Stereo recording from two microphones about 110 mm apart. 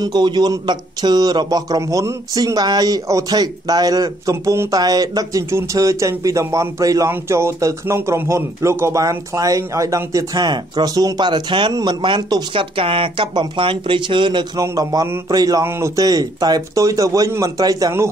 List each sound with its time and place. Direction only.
0.0 s a man's voice: 40° right (ahead or behind)
12.7 s speech: 55° right (ahead or behind)
14.6 s a man's voice: 35° right (ahead or behind)
15.6 s a man's voice: 20° right (ahead or behind)
16.0 s a man's voice: 35° right (ahead or behind)